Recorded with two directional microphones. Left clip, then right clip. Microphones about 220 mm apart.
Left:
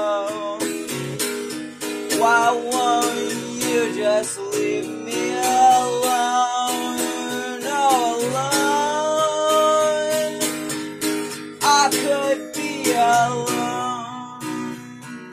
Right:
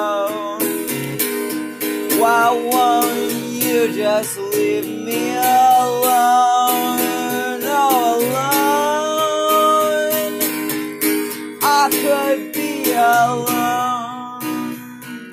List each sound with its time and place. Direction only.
0.0 s music: 30° right (ahead or behind)
2.1 s music: 30° right (ahead or behind)
11.6 s music: 30° right (ahead or behind)